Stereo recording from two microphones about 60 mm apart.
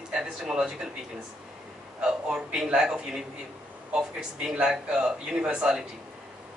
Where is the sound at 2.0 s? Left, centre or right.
Centre.